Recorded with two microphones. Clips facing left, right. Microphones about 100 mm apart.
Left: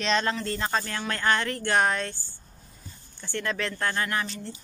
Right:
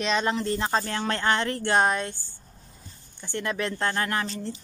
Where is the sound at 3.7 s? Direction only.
30° right (ahead or behind).